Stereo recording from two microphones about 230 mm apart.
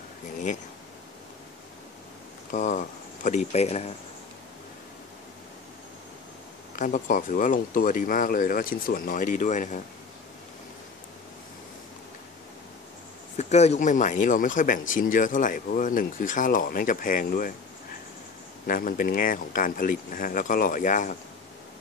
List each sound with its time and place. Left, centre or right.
2.5 s speech: left
6.8 s speech: left
13.4 s speech: left
18.7 s speech: left